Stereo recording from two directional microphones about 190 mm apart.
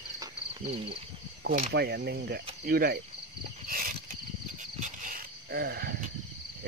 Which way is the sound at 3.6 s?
50° right (ahead or behind).